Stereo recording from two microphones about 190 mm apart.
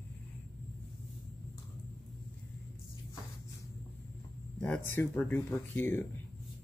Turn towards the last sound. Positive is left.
turn(degrees=10)  # may be behind; listen again after turning